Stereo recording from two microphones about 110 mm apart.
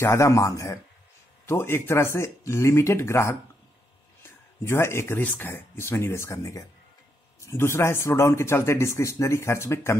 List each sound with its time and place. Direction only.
0.0 s a man's voice: 25° left (ahead or behind)